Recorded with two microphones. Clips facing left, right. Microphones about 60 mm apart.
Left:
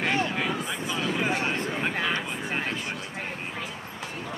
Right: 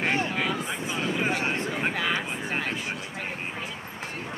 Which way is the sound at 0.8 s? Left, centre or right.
Right.